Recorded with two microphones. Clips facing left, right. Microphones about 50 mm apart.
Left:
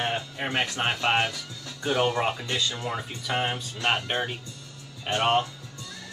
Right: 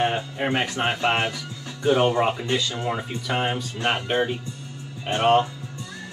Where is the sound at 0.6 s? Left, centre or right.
Right.